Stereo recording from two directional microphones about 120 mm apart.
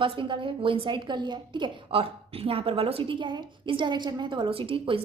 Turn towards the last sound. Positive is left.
turn(degrees=-50)  # may be behind; listen again after turning